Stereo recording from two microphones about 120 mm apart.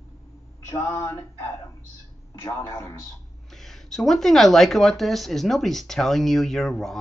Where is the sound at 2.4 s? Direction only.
25° left (ahead or behind).